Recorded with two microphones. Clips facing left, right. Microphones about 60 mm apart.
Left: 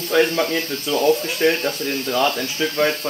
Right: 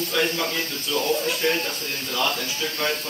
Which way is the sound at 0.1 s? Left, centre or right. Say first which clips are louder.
Left 9 dB; left.